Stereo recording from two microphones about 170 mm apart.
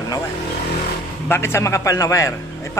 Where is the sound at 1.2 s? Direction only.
15° left (ahead or behind).